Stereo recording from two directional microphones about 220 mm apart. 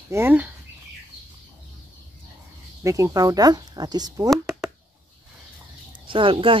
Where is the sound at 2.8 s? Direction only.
15° right (ahead or behind).